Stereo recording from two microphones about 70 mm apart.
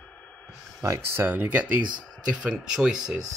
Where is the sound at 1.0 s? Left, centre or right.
Right; by 3.2 s centre.